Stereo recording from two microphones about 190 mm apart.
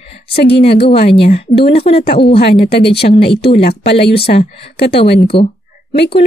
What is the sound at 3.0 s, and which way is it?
Speech, 45° left (ahead or behind).